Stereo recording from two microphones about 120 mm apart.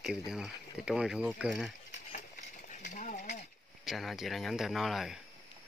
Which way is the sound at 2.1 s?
90° left.